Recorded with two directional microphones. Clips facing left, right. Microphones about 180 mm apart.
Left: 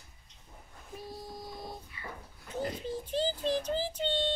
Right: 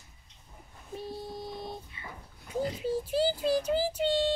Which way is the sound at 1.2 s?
25° right (ahead or behind).